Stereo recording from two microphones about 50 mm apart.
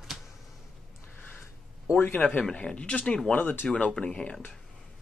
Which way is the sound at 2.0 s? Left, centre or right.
Left.